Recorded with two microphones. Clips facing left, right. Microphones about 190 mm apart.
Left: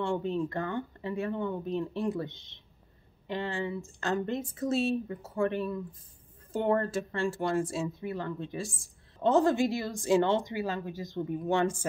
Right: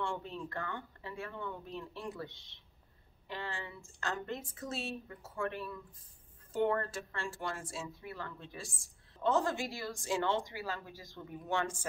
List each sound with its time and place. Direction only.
0.0 s speech: 20° left (ahead or behind)